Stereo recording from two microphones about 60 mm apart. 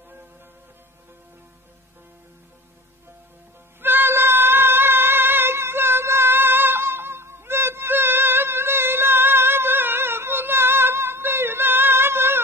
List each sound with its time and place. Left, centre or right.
3.8 s cat: right